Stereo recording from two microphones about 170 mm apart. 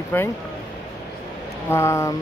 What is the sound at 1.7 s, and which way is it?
Speech, 15° left (ahead or behind).